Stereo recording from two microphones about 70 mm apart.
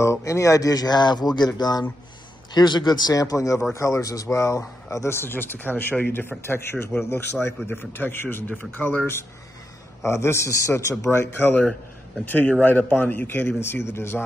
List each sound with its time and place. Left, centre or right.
0.0 s speech: left
2.5 s a man's voice: left